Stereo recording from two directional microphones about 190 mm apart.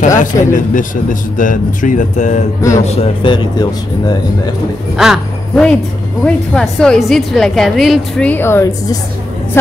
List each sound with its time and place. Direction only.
0.2 s a man's voice: 40° left (ahead or behind); by 4.1 s 20° left (ahead or behind)
4.9 s a woman's voice: centre (ahead or behind)